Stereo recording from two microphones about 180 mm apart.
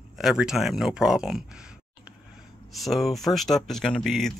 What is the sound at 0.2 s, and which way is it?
Speech, 5° right (ahead or behind).